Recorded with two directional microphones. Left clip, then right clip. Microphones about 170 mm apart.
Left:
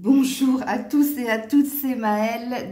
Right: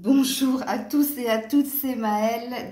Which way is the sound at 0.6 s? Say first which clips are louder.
Left 2 dB; 50° left (ahead or behind).